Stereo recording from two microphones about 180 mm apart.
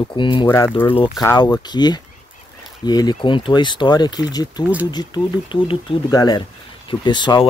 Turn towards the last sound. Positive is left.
turn(degrees=25)  # may be behind; listen again after turning